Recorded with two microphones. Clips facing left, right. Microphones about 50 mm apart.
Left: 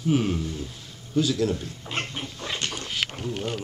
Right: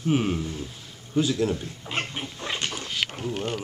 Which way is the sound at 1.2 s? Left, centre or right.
Right.